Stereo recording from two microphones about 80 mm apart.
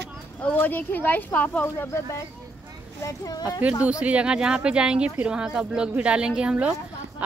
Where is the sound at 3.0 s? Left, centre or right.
Left.